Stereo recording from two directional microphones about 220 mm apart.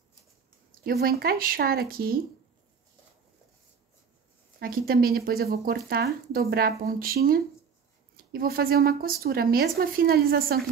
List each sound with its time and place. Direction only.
0.7 s speech: 40° right (ahead or behind)
4.6 s speech: 40° right (ahead or behind)
8.2 s speech: 40° right (ahead or behind)